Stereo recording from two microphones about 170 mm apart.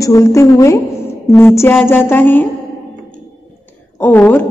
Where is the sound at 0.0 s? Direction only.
20° left (ahead or behind).